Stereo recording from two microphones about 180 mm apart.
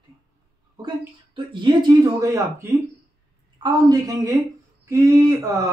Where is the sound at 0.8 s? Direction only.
25° right (ahead or behind).